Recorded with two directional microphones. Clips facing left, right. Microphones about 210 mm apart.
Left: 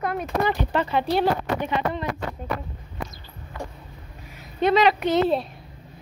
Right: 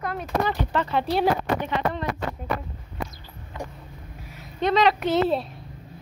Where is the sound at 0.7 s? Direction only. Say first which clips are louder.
Left 2 dB; 15° left (ahead or behind).